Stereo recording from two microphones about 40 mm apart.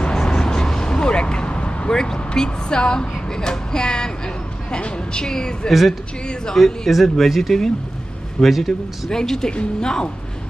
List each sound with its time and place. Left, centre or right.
0.1 s vehicle: centre
1.9 s a sound: centre
4.6 s speech: left
5.7 s a man's voice: centre
6.5 s speech: centre
6.9 s a man's voice: centre
9.1 s speech: centre